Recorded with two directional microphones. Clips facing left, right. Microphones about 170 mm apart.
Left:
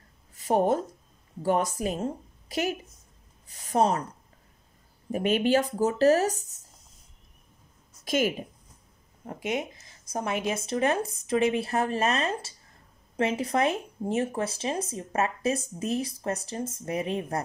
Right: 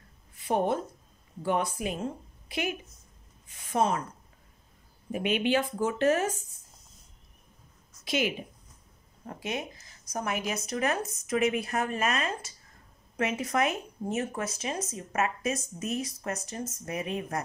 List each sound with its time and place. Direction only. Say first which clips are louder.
0.4 s a woman's voice: left 4 dB; 40° left (ahead or behind)
5.1 s speech: left 3 dB; 40° left (ahead or behind)
8.0 s a woman's voice: left 3 dB; 45° left (ahead or behind)
9.2 s speech: left 4 dB; 20° left (ahead or behind)